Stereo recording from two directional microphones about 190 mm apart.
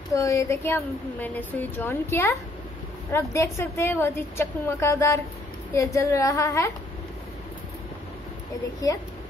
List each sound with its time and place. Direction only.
0.1 s a woman's voice: 15° left (ahead or behind)